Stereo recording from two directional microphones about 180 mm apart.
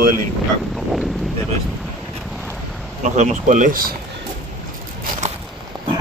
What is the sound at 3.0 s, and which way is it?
Speech, 45° right (ahead or behind).